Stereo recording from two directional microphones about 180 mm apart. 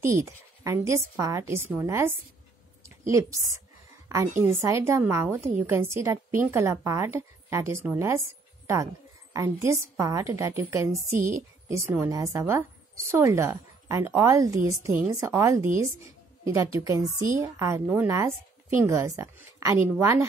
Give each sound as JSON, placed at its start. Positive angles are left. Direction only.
{"t": 0.0, "sound": "a woman's voice", "side_deg": -15}
{"t": 9.3, "sound": "a woman's voice", "side_deg": -15}
{"t": 11.1, "sound": "a woman's voice", "side_deg": -45}
{"t": 11.7, "sound": "a woman's voice", "side_deg": -15}